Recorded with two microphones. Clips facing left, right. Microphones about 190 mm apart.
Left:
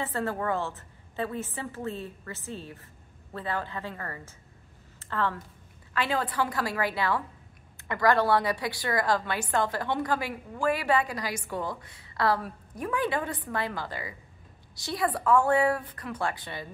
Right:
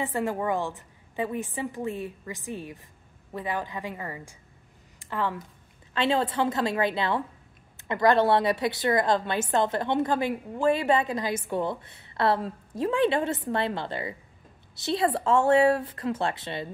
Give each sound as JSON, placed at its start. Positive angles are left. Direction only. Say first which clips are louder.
{"t": 0.0, "sound": "a woman's voice", "louder": "right 2 dB", "side_deg": -15}
{"t": 4.9, "sound": "a sound", "louder": "right 1 dB", "side_deg": -15}
{"t": 5.9, "sound": "a woman's voice", "louder": "right 4 dB", "side_deg": -25}